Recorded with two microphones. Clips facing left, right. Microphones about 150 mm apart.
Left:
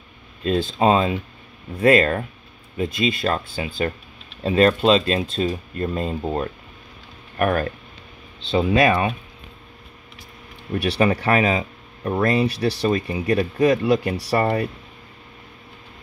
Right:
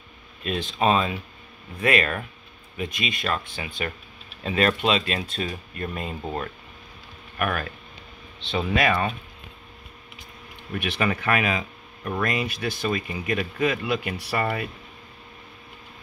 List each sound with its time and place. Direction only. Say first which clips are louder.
0.5 s speech: left 5 dB; 30° left (ahead or behind)
8.5 s speech: left 6 dB; 30° left (ahead or behind)
10.7 s speech: left 6 dB; 35° left (ahead or behind)